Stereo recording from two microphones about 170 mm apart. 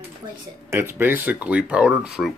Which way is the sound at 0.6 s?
15° right (ahead or behind).